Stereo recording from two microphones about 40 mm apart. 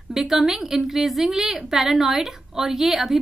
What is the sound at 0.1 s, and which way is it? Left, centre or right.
A woman's voice, centre.